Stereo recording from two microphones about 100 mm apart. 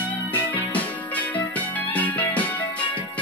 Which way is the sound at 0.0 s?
20° left (ahead or behind).